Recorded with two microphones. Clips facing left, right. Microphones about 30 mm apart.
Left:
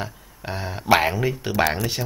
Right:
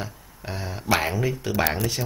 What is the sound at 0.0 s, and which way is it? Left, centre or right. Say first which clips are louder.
Speech: left 3 dB; centre.